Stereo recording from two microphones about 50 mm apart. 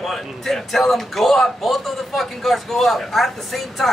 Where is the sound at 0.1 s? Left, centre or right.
Centre.